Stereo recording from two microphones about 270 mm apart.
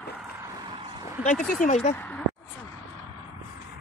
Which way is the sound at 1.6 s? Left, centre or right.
Left.